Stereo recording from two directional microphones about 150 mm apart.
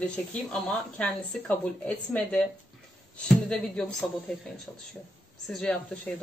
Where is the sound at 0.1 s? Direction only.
5° left (ahead or behind).